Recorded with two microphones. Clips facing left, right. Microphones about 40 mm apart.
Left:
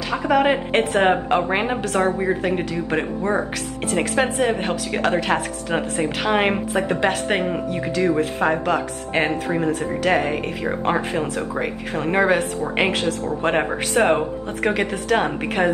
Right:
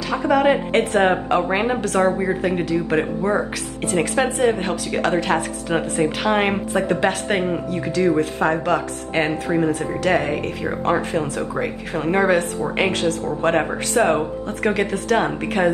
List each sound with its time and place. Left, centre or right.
0.2 s a woman's voice: centre
13.0 s speech: left
13.4 s a woman's voice: centre